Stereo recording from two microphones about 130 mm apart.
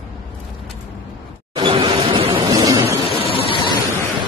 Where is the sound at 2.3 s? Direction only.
30° right (ahead or behind).